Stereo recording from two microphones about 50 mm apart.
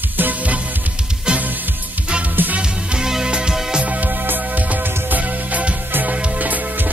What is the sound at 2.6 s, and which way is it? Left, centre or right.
Music, centre.